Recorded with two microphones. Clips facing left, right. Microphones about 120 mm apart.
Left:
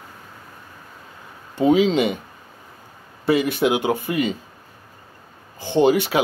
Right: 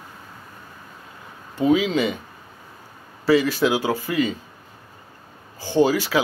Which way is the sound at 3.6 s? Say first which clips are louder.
Left 1 dB; 20° left (ahead or behind).